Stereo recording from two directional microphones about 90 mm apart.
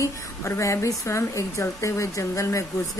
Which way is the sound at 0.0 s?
35° left (ahead or behind).